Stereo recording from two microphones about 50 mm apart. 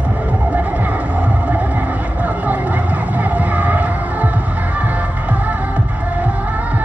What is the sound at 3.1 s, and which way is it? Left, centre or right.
Music, right.